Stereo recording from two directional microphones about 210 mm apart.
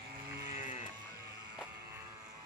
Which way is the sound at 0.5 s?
35° left (ahead or behind).